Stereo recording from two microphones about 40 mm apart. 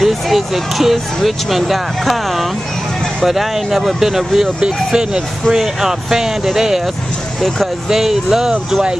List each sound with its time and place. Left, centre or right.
0.0 s speech: centre
7.9 s speech: centre